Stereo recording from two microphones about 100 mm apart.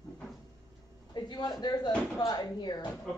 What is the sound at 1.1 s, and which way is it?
Speech, 45° left (ahead or behind).